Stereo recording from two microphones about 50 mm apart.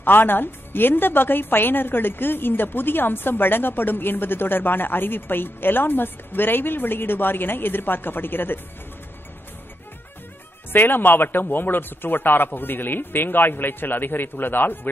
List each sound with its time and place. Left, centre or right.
0.0 s a woman's voice: left
10.7 s a woman's voice: left